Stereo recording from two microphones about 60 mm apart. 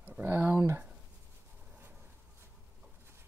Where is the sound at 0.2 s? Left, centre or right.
Right.